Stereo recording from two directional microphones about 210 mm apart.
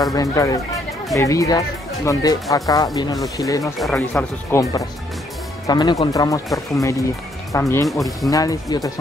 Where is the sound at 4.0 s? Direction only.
10° left (ahead or behind).